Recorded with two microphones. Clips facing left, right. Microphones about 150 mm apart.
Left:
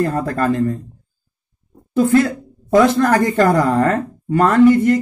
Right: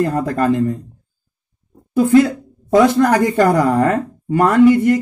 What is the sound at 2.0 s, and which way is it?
A woman's voice, 15° right (ahead or behind).